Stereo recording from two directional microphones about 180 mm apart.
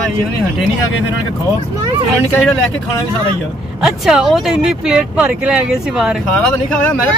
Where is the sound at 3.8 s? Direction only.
5° right (ahead or behind).